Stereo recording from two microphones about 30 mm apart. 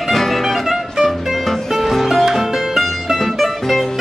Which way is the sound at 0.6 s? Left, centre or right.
Centre.